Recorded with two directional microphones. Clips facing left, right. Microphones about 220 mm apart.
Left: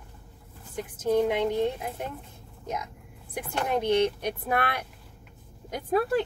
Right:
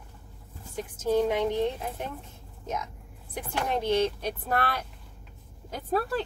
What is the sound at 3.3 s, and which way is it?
A woman's voice, 15° left (ahead or behind).